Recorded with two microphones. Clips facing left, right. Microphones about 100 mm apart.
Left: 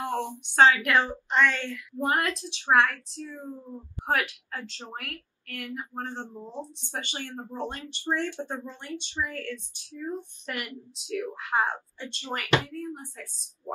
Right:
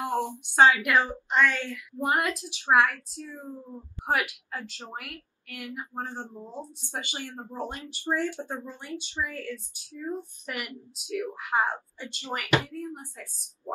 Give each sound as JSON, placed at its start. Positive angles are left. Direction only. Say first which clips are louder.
{"t": 0.0, "sound": "a woman's voice", "louder": "right 1 dB", "side_deg": -20}